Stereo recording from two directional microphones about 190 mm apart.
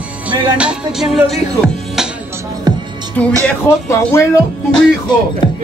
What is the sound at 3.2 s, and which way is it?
Speech, 10° left (ahead or behind).